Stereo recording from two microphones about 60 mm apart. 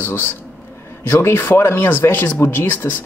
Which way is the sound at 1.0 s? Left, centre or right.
Left.